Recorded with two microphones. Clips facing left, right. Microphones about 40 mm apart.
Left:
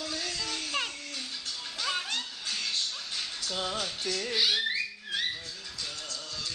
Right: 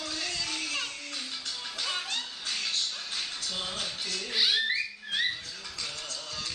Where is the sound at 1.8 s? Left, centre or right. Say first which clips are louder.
Left 2 dB; centre.